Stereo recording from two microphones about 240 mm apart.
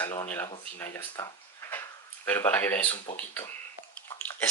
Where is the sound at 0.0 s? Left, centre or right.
Centre.